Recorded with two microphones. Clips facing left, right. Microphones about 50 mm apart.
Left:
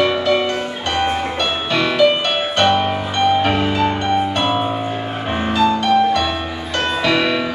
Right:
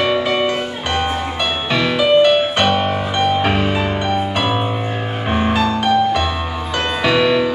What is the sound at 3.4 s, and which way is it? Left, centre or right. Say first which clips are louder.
Music: even; right.